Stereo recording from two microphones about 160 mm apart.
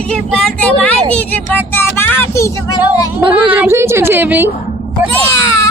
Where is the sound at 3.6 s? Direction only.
15° right (ahead or behind).